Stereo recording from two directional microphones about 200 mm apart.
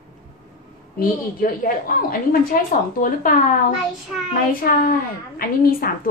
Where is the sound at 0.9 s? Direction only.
45° left (ahead or behind).